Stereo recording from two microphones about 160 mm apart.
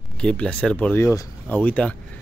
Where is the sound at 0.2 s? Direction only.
5° left (ahead or behind).